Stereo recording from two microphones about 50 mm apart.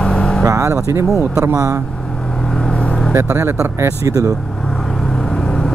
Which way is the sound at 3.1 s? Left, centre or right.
Right.